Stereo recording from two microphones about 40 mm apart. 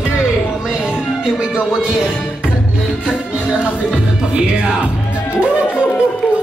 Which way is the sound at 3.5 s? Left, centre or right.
Right.